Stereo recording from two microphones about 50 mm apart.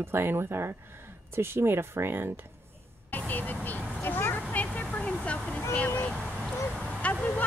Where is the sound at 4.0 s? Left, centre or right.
Left.